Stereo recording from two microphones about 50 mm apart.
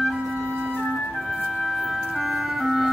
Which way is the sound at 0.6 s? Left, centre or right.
Right.